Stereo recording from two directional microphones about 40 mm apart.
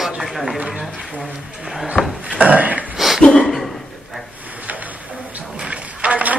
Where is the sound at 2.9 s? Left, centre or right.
Centre.